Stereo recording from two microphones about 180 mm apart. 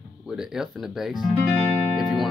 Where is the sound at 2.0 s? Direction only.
5° right (ahead or behind).